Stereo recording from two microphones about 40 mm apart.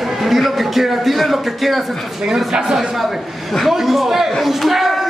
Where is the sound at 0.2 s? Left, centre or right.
Centre.